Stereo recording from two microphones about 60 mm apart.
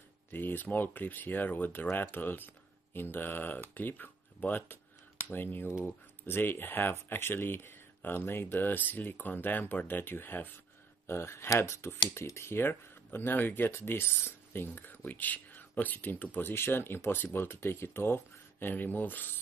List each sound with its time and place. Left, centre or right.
0.3 s speech: left
11.1 s speech: left